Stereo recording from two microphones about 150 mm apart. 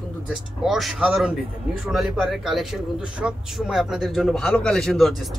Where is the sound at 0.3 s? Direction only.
Centre (ahead or behind).